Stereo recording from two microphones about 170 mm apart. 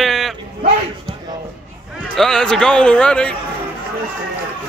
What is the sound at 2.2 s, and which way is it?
Speech, 5° left (ahead or behind).